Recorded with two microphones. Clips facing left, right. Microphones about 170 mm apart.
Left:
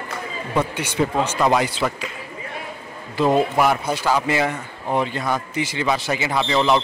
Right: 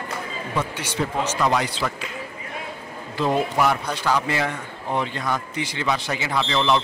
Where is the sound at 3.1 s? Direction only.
10° left (ahead or behind).